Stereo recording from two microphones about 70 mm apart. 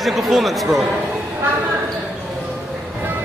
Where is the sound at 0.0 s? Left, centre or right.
Centre.